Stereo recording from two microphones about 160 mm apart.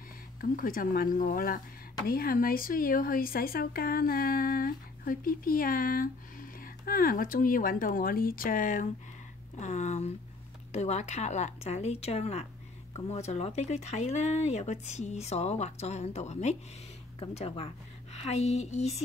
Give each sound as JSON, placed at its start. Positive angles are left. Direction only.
{"t": 0.4, "sound": "speech", "side_deg": 60}
{"t": 9.6, "sound": "speech", "side_deg": 45}